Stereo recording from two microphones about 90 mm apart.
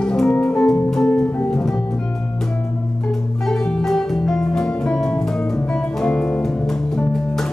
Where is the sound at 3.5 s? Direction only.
5° left (ahead or behind).